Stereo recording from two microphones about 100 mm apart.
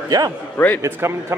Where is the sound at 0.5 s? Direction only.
20° left (ahead or behind).